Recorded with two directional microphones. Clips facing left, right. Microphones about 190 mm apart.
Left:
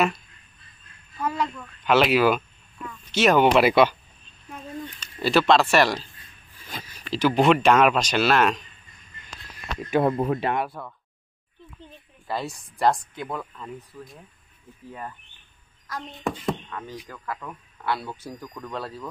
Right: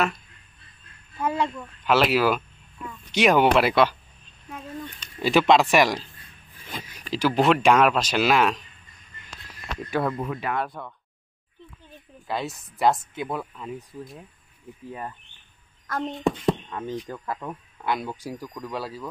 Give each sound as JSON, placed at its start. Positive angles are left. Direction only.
{"t": 1.2, "sound": "speech", "side_deg": -25}
{"t": 1.9, "sound": "speech", "side_deg": 0}
{"t": 2.9, "sound": "speech", "side_deg": -15}
{"t": 3.5, "sound": "speech", "side_deg": 5}
{"t": 5.0, "sound": "speech", "side_deg": -15}
{"t": 9.8, "sound": "speech", "side_deg": 20}
{"t": 10.1, "sound": "speech", "side_deg": 35}
{"t": 10.8, "sound": "speech", "side_deg": 0}
{"t": 12.3, "sound": "speech", "side_deg": 0}
{"t": 16.3, "sound": "speech", "side_deg": -25}